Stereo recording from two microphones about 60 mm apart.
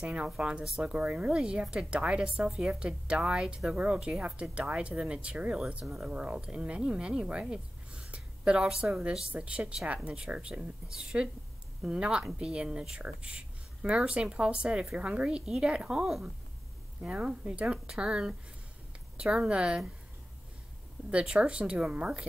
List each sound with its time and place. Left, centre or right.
0.0 s a woman's voice: centre
8.6 s a woman's voice: centre
9.3 s a woman's voice: right
21.1 s a woman's voice: centre